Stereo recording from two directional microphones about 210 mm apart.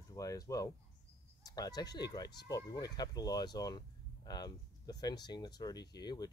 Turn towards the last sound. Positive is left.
turn(degrees=20)  # may be behind; listen again after turning